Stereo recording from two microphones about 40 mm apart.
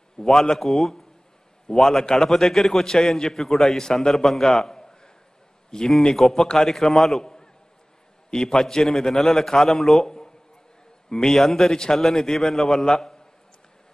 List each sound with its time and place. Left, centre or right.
0.2 s a man's voice: centre